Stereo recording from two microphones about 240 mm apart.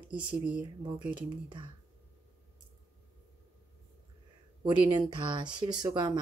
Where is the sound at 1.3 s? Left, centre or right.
Centre.